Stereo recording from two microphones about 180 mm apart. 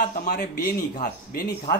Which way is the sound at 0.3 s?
65° left (ahead or behind).